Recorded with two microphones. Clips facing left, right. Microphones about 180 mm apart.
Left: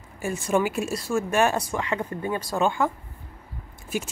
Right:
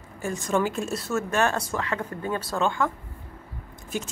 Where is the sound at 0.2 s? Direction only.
10° left (ahead or behind).